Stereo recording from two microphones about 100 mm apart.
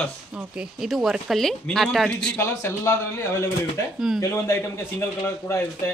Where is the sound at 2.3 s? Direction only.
25° left (ahead or behind).